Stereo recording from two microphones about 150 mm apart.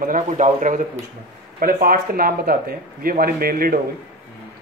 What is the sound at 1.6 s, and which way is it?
Speech, 70° right (ahead or behind).